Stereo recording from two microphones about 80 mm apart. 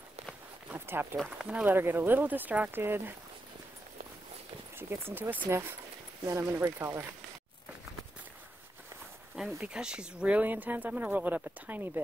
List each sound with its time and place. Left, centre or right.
0.7 s a sound: right
1.4 s speech: centre
1.7 s speech: right
4.7 s speech: right
9.6 s speech: centre; by 12.0 s right